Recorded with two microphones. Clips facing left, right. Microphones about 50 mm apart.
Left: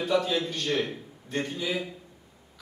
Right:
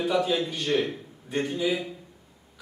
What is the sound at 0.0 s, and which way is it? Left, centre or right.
A man's voice, centre.